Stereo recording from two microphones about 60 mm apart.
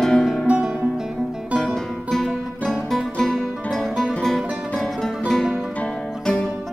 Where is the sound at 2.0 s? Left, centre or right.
Centre.